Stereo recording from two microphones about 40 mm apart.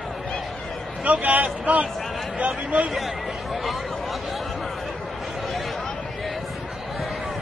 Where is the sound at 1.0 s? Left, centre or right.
Right.